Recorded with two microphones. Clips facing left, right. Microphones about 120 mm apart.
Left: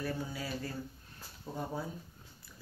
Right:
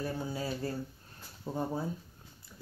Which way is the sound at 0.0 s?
30° right (ahead or behind).